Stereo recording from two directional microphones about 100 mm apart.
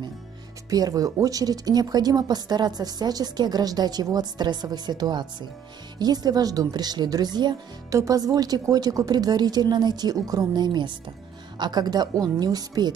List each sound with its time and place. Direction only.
0.7 s speech: 40° right (ahead or behind)